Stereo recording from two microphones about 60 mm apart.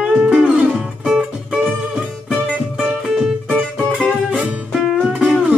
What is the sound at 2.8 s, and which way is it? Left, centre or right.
Music, centre.